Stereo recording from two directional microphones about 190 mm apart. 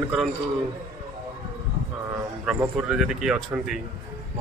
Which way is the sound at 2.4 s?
5° right (ahead or behind).